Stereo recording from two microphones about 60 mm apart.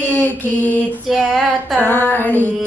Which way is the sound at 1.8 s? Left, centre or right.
Left.